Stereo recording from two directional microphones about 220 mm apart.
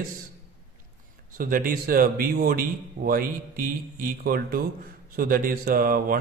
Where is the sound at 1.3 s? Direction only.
40° right (ahead or behind).